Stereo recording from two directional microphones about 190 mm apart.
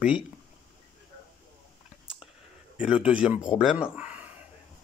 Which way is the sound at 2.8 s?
5° right (ahead or behind).